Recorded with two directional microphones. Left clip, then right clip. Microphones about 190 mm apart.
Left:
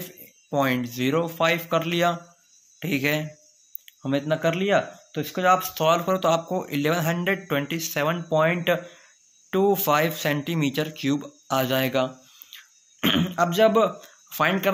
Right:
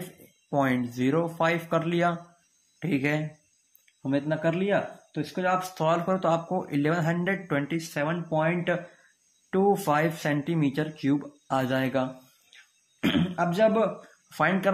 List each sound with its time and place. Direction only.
0.5 s speech: 15° left (ahead or behind)
4.0 s speech: 30° left (ahead or behind)
5.8 s speech: 15° left (ahead or behind)
9.5 s speech: 20° left (ahead or behind)
14.3 s speech: 15° left (ahead or behind)